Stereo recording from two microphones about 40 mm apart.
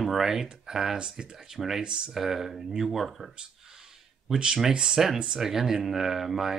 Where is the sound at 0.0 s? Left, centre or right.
Centre.